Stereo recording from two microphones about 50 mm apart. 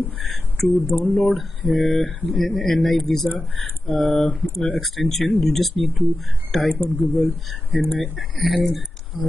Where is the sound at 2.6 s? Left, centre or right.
Centre.